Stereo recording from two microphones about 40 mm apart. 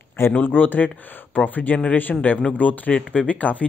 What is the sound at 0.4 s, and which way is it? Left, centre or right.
Speech, left.